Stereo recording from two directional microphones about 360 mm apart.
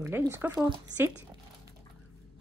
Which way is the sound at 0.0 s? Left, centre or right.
Centre.